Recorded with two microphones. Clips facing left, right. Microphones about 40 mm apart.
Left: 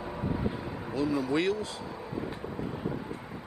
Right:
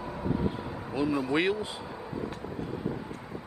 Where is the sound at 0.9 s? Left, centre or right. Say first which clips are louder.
Right 1 dB; centre.